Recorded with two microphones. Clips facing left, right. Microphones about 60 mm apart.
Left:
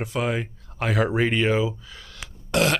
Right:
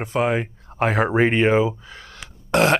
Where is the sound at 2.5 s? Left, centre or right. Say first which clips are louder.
Right 4 dB; right.